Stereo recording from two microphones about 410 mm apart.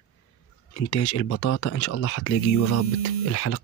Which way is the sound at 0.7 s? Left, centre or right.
Left.